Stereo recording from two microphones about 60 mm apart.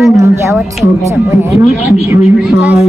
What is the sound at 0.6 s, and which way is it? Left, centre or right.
Speech, centre.